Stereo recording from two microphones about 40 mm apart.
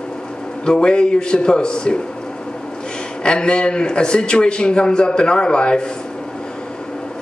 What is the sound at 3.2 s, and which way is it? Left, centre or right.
A man's voice, left.